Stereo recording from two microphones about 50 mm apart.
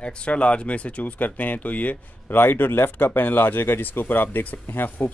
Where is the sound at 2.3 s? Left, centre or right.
Left.